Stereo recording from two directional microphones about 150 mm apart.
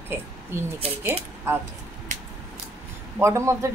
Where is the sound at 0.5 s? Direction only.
15° right (ahead or behind).